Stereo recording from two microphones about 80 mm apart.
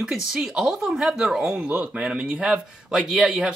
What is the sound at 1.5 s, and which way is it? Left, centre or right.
Speech, centre.